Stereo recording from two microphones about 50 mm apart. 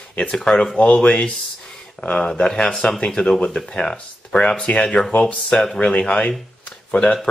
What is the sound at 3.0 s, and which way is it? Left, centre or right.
Speech, centre.